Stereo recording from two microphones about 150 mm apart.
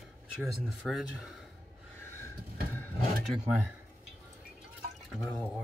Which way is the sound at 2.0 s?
15° left (ahead or behind).